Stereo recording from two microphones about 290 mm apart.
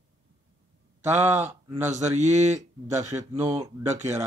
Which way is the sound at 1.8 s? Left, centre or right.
Right.